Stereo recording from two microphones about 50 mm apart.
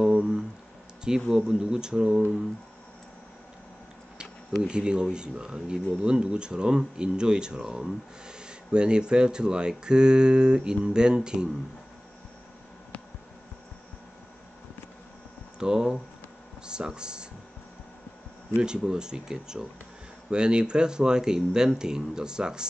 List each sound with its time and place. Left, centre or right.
0.0 s a sound: centre
1.3 s speech: centre
4.2 s a sound: centre
5.1 s speech: centre
15.6 s speech: centre
18.6 s speech: centre